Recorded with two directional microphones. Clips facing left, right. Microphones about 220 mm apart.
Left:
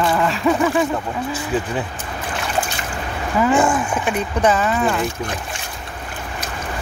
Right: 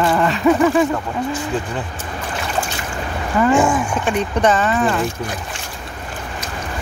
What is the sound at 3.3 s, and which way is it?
Speech, centre (ahead or behind).